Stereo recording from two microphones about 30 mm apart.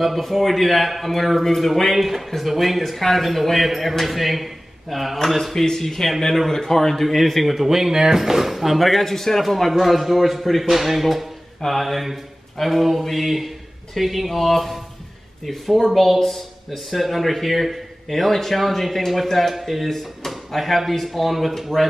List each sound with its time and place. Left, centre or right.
0.0 s speech: centre
2.0 s speech: centre
5.5 s speech: centre
7.5 s speech: centre
16.2 s speech: centre
16.7 s speech: centre